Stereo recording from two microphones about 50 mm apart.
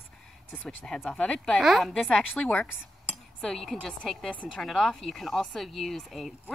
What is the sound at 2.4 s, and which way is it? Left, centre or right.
Speech, centre.